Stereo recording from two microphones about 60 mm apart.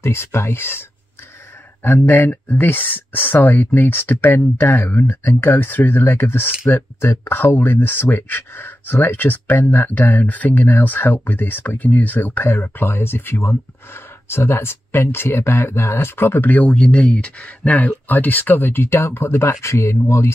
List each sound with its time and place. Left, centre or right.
0.0 s speech: left
2.0 s speech: left; by 17.7 s centre
17.7 s speech: left